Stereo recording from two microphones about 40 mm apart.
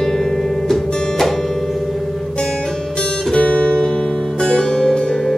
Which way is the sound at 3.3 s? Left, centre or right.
Left.